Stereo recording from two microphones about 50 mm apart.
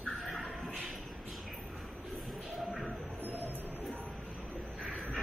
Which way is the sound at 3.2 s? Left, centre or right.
Right.